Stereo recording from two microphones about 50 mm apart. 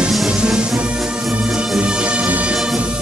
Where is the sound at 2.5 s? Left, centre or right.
Centre.